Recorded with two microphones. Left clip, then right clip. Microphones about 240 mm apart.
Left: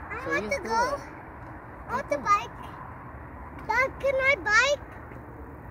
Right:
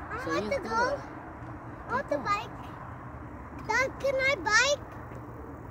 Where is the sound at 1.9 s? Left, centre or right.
Centre.